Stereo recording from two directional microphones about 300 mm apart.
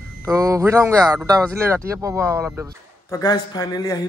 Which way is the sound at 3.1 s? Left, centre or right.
Centre.